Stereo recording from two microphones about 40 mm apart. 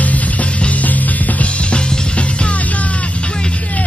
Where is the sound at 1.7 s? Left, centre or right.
Left.